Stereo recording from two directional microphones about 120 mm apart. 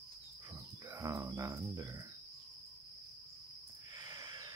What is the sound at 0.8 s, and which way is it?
Cricket, 25° right (ahead or behind).